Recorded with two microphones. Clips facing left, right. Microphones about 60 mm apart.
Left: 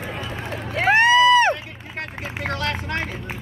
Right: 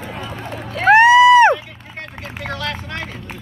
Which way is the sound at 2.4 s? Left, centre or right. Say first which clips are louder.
Even; left.